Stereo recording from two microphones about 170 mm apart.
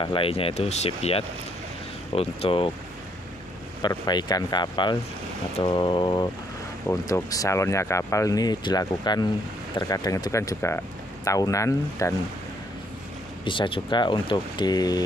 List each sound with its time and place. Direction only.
0.0 s speech: 30° left (ahead or behind)
3.8 s speech: 25° left (ahead or behind)
13.5 s speech: 30° left (ahead or behind)